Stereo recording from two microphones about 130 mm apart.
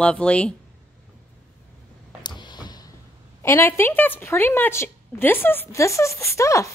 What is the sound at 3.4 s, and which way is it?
A woman's voice, 20° left (ahead or behind).